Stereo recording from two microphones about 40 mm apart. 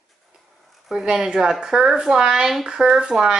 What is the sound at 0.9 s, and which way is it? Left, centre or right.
A woman's voice, centre.